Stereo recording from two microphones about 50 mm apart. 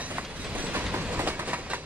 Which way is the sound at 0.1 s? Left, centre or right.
Right.